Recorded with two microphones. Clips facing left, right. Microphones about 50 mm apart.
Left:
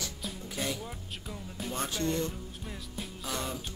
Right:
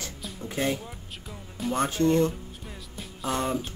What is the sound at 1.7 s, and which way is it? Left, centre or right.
Speech, right.